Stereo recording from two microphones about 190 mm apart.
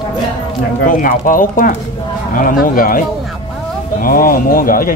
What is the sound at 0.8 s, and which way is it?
Speech, 45° left (ahead or behind).